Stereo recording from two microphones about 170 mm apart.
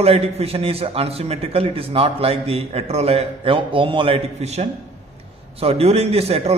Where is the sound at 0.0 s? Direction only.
35° right (ahead or behind).